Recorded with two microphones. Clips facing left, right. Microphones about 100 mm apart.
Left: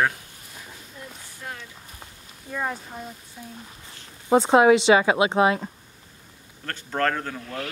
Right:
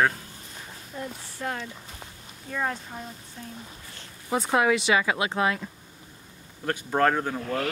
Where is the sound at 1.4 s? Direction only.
60° right (ahead or behind).